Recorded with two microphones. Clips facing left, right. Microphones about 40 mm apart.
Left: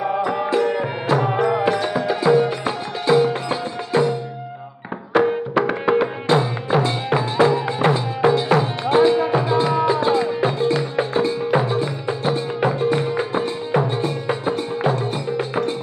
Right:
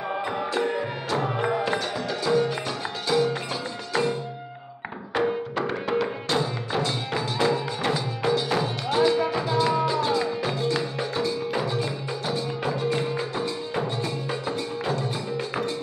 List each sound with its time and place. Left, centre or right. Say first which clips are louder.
1.6 s music: left 7 dB; left
5.1 s music: left 8 dB; left
5.9 s music: left 9 dB; left